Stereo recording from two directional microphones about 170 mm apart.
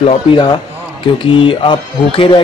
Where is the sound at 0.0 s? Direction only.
35° left (ahead or behind).